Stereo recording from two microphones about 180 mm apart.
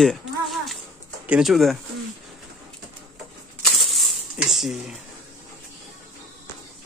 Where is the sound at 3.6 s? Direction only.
Centre (ahead or behind).